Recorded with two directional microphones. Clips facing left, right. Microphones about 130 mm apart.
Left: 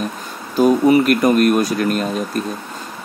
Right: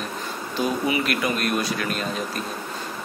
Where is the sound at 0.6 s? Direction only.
45° left (ahead or behind).